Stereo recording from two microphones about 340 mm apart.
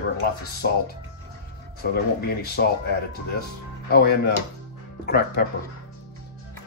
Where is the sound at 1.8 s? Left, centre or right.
Left.